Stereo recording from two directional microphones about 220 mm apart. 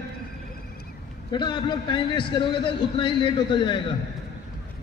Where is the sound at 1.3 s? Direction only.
20° left (ahead or behind).